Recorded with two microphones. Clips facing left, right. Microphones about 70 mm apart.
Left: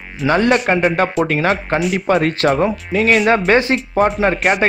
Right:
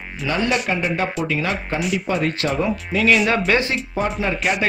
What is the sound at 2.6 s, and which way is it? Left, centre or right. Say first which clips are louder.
Speech: left 3 dB; left.